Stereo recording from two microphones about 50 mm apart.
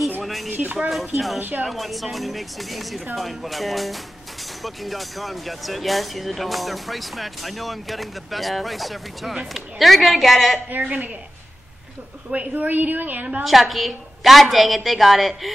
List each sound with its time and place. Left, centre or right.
0.2 s a sound: centre
0.5 s speech: right
0.8 s speech: centre
10.7 s a woman's voice: right
12.3 s a woman's voice: right
13.4 s speech: centre